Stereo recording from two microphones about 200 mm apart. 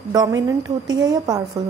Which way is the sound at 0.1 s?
20° right (ahead or behind).